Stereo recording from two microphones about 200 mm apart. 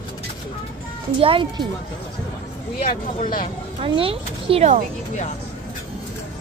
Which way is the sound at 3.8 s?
25° right (ahead or behind).